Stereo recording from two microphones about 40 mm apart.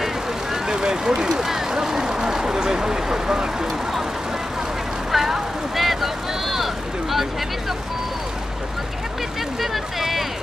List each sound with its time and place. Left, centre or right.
0.0 s vehicle: centre
5.1 s a sound: centre
9.6 s speech: centre